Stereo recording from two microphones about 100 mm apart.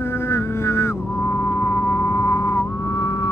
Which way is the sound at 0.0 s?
25° left (ahead or behind).